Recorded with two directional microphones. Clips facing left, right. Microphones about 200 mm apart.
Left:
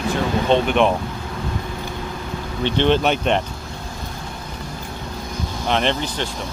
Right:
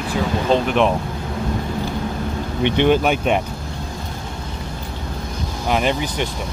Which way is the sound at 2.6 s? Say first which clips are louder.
Right 2 dB; 10° right (ahead or behind).